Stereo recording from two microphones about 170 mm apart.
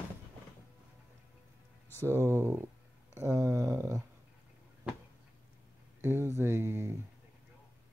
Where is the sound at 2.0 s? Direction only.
15° right (ahead or behind).